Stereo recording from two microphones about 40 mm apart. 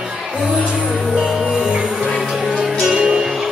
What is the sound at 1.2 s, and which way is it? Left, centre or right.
Music, centre.